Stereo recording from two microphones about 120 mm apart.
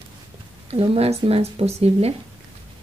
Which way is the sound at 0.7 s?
60° right (ahead or behind).